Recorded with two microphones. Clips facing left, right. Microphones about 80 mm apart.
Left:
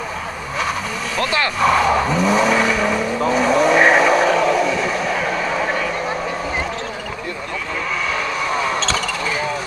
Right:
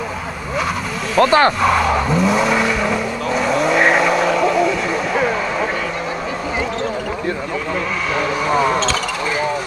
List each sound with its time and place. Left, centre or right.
1.1 s speech: right
1.6 s vehicle: centre
8.5 s basketball bounce: centre